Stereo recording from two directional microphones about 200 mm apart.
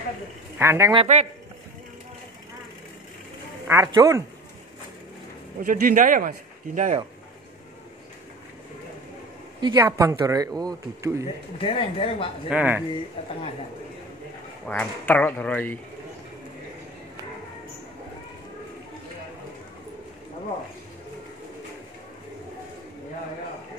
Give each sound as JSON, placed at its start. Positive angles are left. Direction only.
{"t": 0.6, "sound": "speech", "side_deg": -15}
{"t": 0.9, "sound": "a man's voice", "side_deg": -35}
{"t": 3.6, "sound": "speech", "side_deg": -15}
{"t": 5.6, "sound": "speech", "side_deg": -45}
{"t": 9.6, "sound": "speech", "side_deg": -20}
{"t": 11.6, "sound": "speech", "side_deg": 25}
{"t": 12.4, "sound": "speech", "side_deg": -10}
{"t": 14.7, "sound": "speech", "side_deg": 5}